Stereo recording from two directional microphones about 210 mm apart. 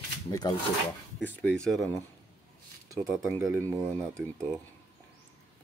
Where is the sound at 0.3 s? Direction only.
20° left (ahead or behind).